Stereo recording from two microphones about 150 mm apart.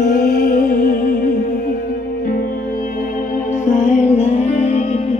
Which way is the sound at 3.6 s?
55° left (ahead or behind).